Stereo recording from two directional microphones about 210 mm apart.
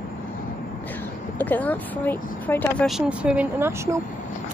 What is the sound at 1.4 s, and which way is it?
Speech, 10° left (ahead or behind).